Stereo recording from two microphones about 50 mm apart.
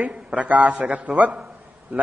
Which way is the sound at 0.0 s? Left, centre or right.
Right.